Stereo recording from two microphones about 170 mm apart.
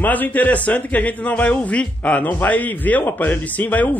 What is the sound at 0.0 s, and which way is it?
A man's voice, 10° left (ahead or behind).